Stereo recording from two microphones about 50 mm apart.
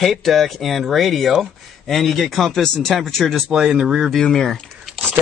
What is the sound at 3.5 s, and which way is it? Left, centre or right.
Speech, centre.